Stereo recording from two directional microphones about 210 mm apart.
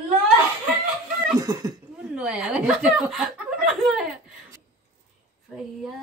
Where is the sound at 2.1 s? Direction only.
5° right (ahead or behind).